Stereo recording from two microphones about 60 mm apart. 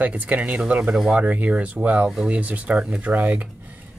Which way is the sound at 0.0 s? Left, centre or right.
Right.